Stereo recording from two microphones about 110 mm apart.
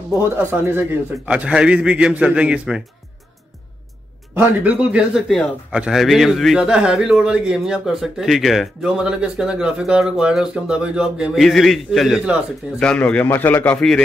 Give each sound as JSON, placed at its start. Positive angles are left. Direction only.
{"t": 0.2, "sound": "speech", "side_deg": -20}
{"t": 1.3, "sound": "a man's voice", "side_deg": -10}
{"t": 4.4, "sound": "a man's voice", "side_deg": -10}
{"t": 13.7, "sound": "a man's voice", "side_deg": 5}